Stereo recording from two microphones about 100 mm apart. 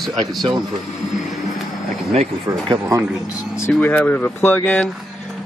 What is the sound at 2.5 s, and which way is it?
Speech, 35° right (ahead or behind).